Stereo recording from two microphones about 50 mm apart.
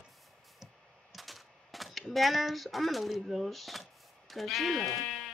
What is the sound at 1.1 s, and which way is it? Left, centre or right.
Speech, centre.